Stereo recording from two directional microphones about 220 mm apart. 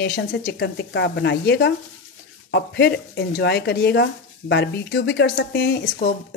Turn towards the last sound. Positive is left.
turn(degrees=45)  # may be behind; listen again after turning